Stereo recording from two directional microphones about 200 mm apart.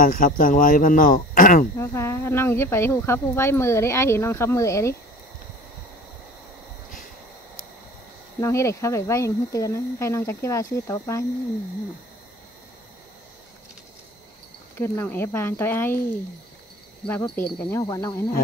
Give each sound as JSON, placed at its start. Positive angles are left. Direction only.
{"t": 0.0, "sound": "speech", "side_deg": 45}
{"t": 1.8, "sound": "speech", "side_deg": 15}
{"t": 8.4, "sound": "speech", "side_deg": 15}
{"t": 14.8, "sound": "speech", "side_deg": 10}
{"t": 17.0, "sound": "speech", "side_deg": 10}